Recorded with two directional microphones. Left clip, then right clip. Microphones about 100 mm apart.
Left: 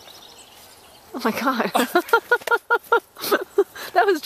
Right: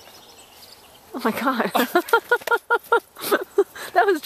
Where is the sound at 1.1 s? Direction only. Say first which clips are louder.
Even; centre (ahead or behind).